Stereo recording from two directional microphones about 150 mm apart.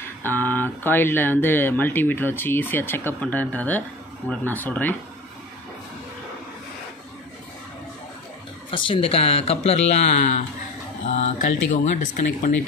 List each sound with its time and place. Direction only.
0.2 s speech: 15° left (ahead or behind)
8.6 s speech: 35° left (ahead or behind); by 12.5 s 60° left (ahead or behind)